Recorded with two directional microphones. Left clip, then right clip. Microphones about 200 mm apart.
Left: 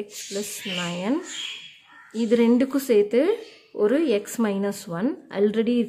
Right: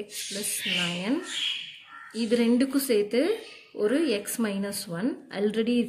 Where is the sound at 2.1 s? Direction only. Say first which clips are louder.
Left 5 dB; 50° left (ahead or behind).